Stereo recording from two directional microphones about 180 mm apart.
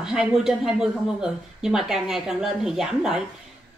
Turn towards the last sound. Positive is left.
turn(degrees=-5)  # may be behind; listen again after turning